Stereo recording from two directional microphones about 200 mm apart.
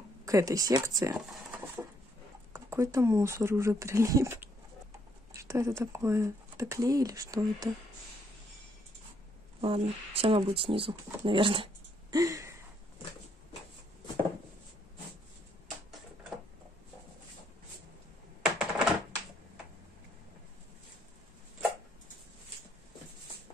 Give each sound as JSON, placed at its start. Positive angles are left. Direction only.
{"t": 0.2, "sound": "speech", "side_deg": -15}
{"t": 2.5, "sound": "speech", "side_deg": -15}
{"t": 9.6, "sound": "speech", "side_deg": -30}
{"t": 18.4, "sound": "typing", "side_deg": -5}